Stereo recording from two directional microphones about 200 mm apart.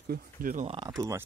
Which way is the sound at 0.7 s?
20° right (ahead or behind).